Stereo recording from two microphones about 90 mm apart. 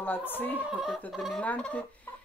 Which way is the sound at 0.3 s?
20° left (ahead or behind).